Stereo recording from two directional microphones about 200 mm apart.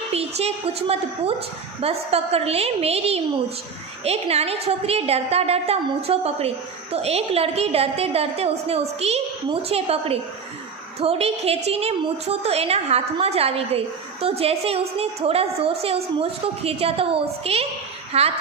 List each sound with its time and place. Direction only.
0.1 s a woman's voice: 30° right (ahead or behind)